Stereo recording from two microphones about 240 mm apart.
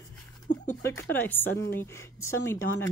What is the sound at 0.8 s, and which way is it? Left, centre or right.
A woman's voice, centre.